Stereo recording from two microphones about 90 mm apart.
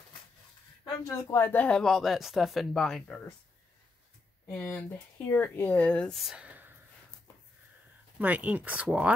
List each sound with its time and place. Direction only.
1.0 s speech: 30° left (ahead or behind); by 3.2 s centre (ahead or behind)
4.6 s speech: 20° left (ahead or behind)
6.1 s speech: 5° right (ahead or behind)
6.4 s a sound: 20° right (ahead or behind)
8.2 s speech: 15° right (ahead or behind)